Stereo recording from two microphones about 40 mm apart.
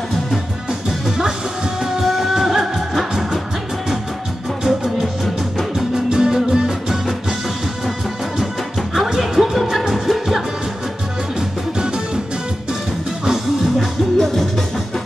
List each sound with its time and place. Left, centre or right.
0.8 s music: centre
4.6 s music: centre
6.0 s music: centre
8.9 s music: centre
13.7 s music: centre